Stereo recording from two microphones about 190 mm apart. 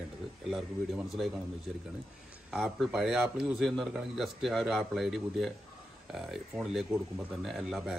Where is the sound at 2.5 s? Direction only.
5° right (ahead or behind).